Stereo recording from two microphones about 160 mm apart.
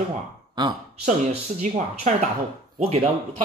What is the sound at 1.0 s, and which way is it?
Speech, 45° right (ahead or behind).